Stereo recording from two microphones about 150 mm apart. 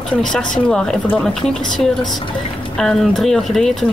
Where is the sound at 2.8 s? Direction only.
5° left (ahead or behind).